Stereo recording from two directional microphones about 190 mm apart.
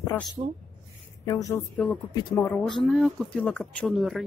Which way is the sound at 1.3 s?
15° left (ahead or behind).